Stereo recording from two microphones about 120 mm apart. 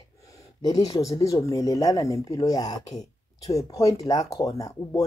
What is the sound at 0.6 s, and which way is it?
Speech, 35° left (ahead or behind).